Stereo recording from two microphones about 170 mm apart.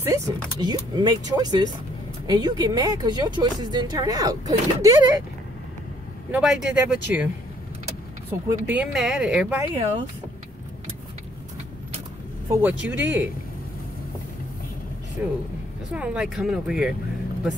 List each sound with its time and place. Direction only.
0.0 s speech: 20° right (ahead or behind)
6.3 s speech: 5° right (ahead or behind)
8.3 s speech: 10° right (ahead or behind)
12.6 s speech: 10° right (ahead or behind)
15.2 s speech: 10° right (ahead or behind)